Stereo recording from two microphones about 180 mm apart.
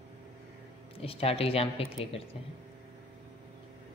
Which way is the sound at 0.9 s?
30° left (ahead or behind).